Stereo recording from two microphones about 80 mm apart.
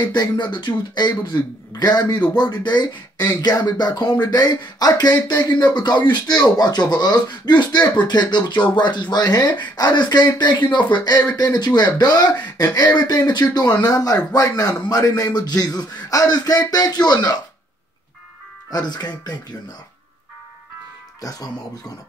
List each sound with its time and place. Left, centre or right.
0.1 s speech: left
1.8 s speech: left
11.1 s speech: left
18.7 s speech: left
21.2 s speech: left